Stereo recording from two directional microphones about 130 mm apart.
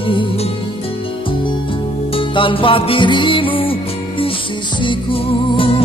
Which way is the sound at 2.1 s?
40° left (ahead or behind).